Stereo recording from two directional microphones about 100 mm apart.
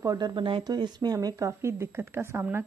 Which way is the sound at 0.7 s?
45° right (ahead or behind).